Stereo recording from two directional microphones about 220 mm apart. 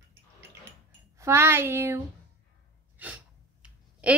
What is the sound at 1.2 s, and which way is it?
Speech, 10° right (ahead or behind).